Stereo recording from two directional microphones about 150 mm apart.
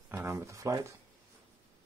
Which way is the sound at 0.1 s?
15° right (ahead or behind).